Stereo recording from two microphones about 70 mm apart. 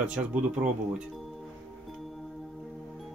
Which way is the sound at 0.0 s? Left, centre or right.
Centre.